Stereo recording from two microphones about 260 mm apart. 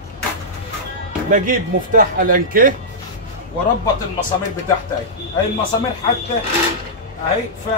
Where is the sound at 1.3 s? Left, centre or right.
Right.